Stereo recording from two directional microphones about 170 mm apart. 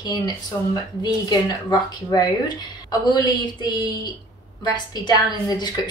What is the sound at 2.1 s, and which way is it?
A woman's voice, 25° left (ahead or behind).